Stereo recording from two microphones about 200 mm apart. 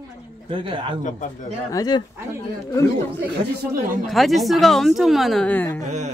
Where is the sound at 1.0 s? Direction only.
40° left (ahead or behind).